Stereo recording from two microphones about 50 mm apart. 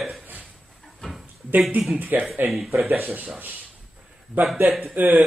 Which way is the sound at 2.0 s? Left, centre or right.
Right.